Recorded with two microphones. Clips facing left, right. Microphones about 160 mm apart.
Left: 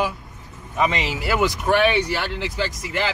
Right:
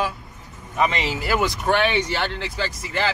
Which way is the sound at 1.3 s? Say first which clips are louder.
Left 2 dB; 5° left (ahead or behind).